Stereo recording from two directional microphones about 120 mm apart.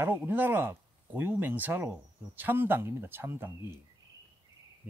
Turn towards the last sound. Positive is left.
turn(degrees=-20)  # may be behind; listen again after turning